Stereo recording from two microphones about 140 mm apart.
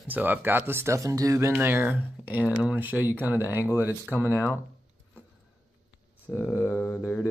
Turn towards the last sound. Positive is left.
turn(degrees=20)  # may be behind; listen again after turning